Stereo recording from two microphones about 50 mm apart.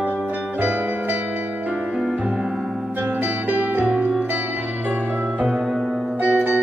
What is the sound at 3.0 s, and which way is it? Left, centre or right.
Music, right.